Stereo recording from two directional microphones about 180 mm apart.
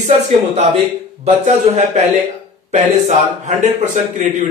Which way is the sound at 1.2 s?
40° right (ahead or behind).